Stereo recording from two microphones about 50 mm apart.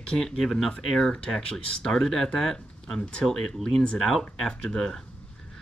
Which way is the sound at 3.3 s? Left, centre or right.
Centre.